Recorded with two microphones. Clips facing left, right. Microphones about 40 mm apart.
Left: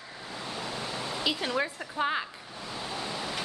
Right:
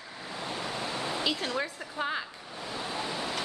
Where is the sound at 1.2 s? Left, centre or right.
Centre.